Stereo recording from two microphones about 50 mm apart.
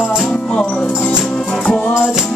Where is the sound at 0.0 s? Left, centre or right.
Centre.